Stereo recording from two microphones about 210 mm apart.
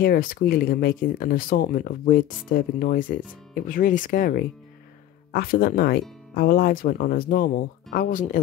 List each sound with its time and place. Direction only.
0.0 s speech: 45° left (ahead or behind)